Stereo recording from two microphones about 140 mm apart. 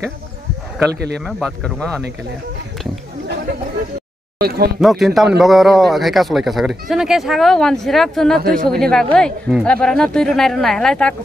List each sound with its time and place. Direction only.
0.8 s a man's voice: 5° left (ahead or behind)
4.4 s speech: 90° right
4.7 s a man's voice: centre (ahead or behind)